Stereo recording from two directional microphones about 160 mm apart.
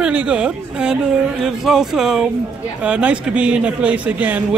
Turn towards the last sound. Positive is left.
turn(degrees=-10)  # may be behind; listen again after turning